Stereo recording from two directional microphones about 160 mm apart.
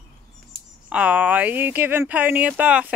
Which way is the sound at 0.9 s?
10° right (ahead or behind).